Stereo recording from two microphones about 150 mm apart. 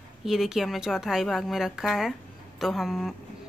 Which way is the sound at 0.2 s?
5° right (ahead or behind).